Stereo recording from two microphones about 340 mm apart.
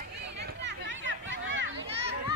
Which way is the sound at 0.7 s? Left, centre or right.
Right.